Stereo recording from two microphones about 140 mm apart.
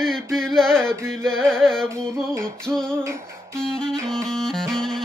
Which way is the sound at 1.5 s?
5° left (ahead or behind).